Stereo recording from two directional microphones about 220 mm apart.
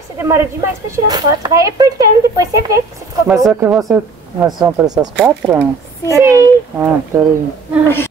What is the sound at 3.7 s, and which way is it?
Speech, centre (ahead or behind).